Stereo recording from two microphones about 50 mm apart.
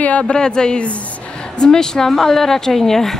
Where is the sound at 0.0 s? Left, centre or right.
Left; by 3.2 s centre.